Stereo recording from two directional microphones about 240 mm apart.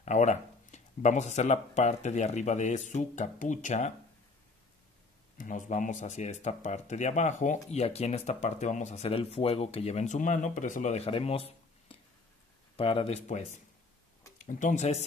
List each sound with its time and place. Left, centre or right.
0.0 s speech: left
5.4 s speech: left